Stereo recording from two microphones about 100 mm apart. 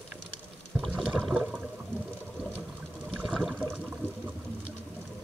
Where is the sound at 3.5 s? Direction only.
20° right (ahead or behind).